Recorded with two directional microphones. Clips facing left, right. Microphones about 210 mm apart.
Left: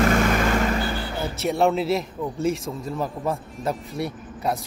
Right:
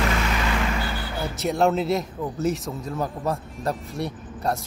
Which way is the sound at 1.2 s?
Centre (ahead or behind).